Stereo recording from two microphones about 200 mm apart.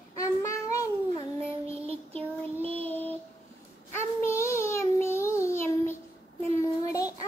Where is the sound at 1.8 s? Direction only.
30° right (ahead or behind).